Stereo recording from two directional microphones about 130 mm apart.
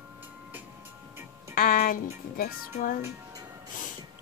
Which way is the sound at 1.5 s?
90° left.